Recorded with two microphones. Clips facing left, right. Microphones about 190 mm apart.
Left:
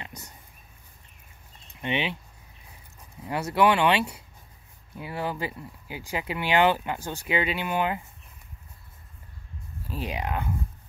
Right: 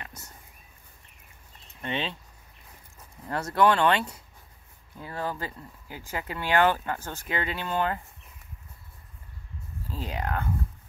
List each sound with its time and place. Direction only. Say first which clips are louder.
0.0 s a sound: left 2 dB; 15° left (ahead or behind)
1.8 s speech: left 3 dB; 15° left (ahead or behind)
3.3 s speech: left 1 dB; 10° left (ahead or behind)
9.8 s speech: left 1 dB; 15° left (ahead or behind)